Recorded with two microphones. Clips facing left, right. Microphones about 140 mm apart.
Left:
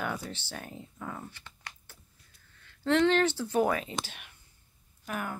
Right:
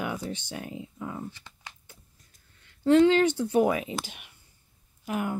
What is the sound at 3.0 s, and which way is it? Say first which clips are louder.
Speech: right 4 dB; 15° right (ahead or behind).